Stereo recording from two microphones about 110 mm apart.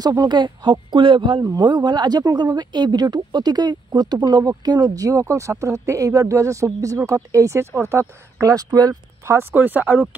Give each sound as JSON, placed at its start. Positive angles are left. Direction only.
{"t": 0.0, "sound": "speech", "side_deg": -40}
{"t": 1.4, "sound": "speech", "side_deg": -35}
{"t": 9.2, "sound": "speech", "side_deg": -25}